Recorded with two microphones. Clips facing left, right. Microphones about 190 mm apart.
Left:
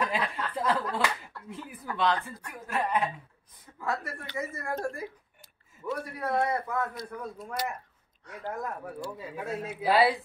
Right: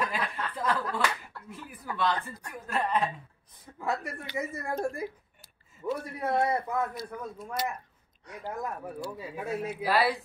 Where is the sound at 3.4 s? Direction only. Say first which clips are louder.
Right 1 dB; 30° right (ahead or behind).